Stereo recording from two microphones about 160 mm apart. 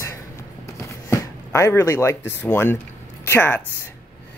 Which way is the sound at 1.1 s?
15° left (ahead or behind).